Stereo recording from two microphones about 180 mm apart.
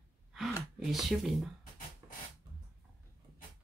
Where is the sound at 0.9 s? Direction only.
Centre (ahead or behind).